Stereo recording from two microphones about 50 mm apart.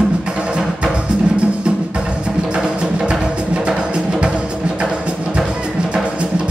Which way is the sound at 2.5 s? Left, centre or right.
Centre.